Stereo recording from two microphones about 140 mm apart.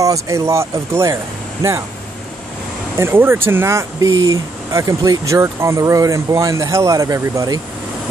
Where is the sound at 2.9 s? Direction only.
15° right (ahead or behind).